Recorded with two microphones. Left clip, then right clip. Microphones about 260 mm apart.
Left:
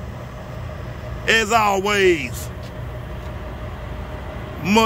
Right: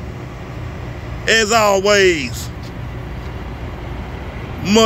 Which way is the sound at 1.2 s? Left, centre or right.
Centre.